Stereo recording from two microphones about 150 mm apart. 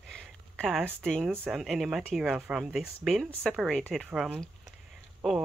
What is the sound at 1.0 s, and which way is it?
Speech, 5° left (ahead or behind).